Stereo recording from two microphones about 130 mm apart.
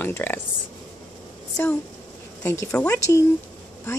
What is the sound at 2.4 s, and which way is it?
Speech, 20° left (ahead or behind).